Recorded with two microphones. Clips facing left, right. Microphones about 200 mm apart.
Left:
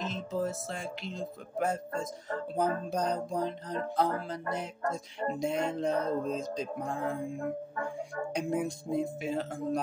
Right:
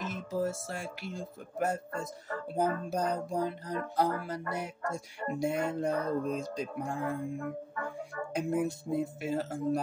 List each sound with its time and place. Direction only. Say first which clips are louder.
0.1 s speech: right 3 dB; 10° right (ahead or behind)
5.9 s mantra: left 2 dB; 25° left (ahead or behind)
6.8 s speech: right 1 dB; 10° right (ahead or behind)